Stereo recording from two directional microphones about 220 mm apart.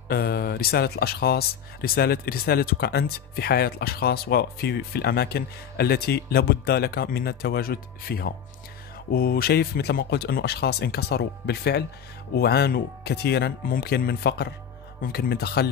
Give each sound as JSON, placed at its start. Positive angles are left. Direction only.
{"t": 0.1, "sound": "speech", "side_deg": 45}